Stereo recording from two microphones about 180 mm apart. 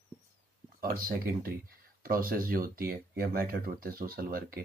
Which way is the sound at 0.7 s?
55° right (ahead or behind).